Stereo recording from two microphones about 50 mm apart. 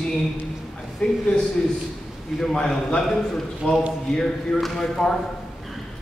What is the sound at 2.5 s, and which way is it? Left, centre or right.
Speech, centre.